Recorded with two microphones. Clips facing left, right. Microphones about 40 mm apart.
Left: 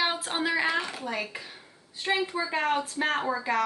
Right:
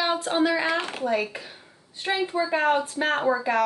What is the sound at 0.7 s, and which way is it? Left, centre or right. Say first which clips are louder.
Speech: right 2 dB; right.